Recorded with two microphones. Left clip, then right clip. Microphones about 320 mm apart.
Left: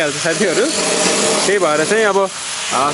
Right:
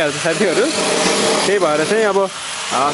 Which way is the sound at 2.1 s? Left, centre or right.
Centre.